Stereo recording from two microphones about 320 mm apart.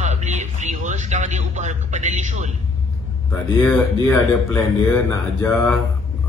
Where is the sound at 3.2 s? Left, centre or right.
Centre.